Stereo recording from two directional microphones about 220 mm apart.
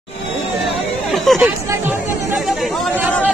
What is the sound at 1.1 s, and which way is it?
Chatter, centre (ahead or behind).